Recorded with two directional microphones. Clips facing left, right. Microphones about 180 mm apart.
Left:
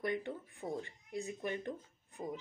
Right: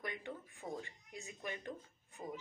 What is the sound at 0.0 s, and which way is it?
Speech, 40° left (ahead or behind).